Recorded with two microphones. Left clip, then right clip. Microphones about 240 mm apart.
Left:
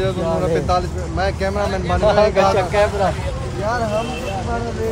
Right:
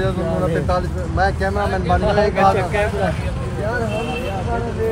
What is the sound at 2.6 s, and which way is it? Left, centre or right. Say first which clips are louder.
Speech: left 3 dB; left.